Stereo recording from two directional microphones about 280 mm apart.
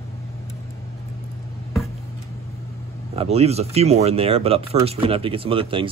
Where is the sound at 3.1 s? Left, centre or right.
Right.